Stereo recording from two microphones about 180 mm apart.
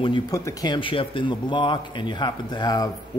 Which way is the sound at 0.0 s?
20° left (ahead or behind).